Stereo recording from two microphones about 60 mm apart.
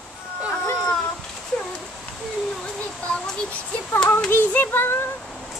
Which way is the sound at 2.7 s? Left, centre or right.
Centre.